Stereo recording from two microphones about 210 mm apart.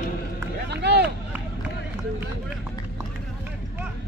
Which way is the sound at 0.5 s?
50° right (ahead or behind).